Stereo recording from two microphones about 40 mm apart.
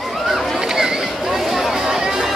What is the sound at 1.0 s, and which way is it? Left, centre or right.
Speech, centre.